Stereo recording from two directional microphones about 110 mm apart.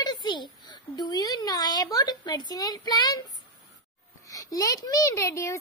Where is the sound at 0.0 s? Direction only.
40° left (ahead or behind).